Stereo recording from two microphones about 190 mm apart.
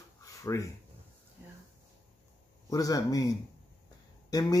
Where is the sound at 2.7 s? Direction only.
20° left (ahead or behind).